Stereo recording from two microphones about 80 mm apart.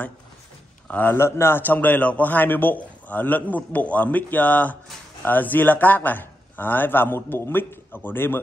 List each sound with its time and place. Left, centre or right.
0.9 s a man's voice: left